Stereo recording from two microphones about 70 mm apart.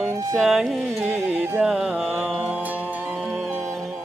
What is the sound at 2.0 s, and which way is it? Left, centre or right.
Music, right.